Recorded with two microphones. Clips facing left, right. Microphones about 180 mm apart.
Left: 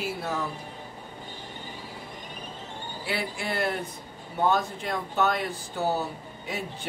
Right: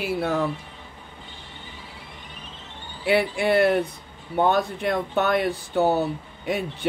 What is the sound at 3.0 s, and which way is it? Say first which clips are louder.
Speech: right 11 dB; 65° right (ahead or behind).